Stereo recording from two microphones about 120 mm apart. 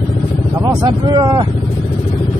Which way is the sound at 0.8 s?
35° right (ahead or behind).